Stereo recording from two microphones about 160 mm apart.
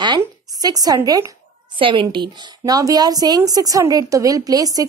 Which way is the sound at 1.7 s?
30° right (ahead or behind).